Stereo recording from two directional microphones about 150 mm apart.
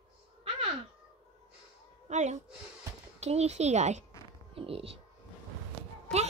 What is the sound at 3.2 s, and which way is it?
A child's voice, 45° right (ahead or behind).